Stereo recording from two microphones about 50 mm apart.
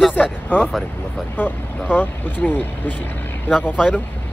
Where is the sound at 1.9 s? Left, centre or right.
Left.